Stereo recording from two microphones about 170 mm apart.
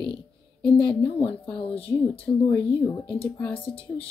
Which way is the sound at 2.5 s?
10° left (ahead or behind).